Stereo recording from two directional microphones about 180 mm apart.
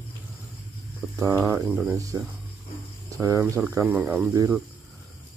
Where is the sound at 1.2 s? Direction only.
15° right (ahead or behind).